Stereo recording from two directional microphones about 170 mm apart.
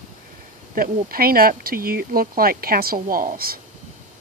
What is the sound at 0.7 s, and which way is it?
Speech, 60° right (ahead or behind).